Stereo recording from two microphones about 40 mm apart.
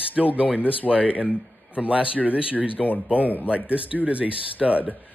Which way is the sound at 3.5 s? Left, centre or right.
Right.